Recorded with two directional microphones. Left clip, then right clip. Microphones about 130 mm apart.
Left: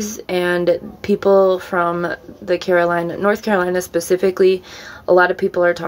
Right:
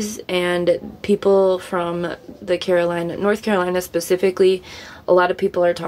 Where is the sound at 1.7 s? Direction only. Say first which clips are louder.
Left 5 dB; 20° right (ahead or behind).